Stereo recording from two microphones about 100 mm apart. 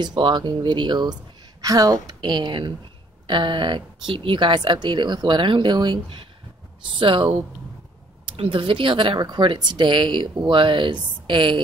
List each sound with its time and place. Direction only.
0.0 s speech: 50° right (ahead or behind)
1.6 s a woman's voice: 35° right (ahead or behind); by 11.6 s 55° right (ahead or behind)